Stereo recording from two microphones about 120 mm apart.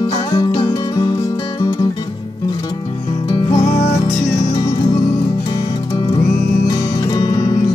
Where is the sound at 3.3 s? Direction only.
30° left (ahead or behind).